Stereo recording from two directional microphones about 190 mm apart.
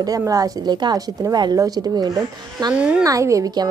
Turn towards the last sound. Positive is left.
turn(degrees=-15)  # may be behind; listen again after turning